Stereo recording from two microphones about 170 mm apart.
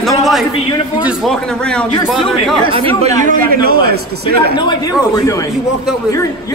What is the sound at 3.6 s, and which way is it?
Speech, 65° right (ahead or behind).